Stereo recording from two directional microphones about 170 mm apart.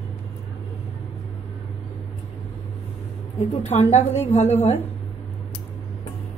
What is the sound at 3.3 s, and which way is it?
Speech, 40° left (ahead or behind).